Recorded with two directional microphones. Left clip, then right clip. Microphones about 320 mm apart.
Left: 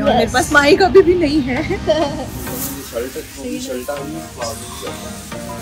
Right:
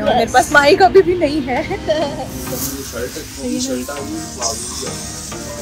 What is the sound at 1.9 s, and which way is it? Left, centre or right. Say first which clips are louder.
Speech: left 2 dB; centre.